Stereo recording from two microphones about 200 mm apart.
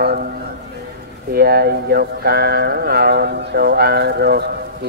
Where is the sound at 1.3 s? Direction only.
50° right (ahead or behind).